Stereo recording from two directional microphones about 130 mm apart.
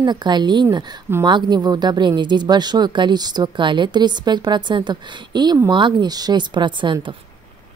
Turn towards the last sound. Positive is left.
turn(degrees=-35)  # may be behind; listen again after turning